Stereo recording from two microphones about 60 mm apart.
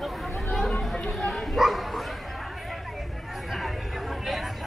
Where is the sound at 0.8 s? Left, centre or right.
Centre.